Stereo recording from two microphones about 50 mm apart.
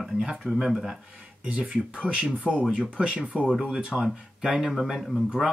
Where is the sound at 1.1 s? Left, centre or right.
Right.